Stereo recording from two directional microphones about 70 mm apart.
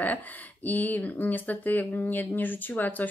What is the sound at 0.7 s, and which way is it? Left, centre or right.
Speech, left.